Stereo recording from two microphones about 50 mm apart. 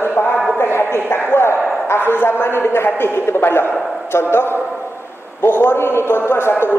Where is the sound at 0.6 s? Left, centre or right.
Left.